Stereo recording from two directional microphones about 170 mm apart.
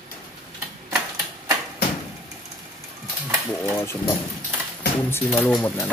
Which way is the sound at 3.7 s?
15° left (ahead or behind).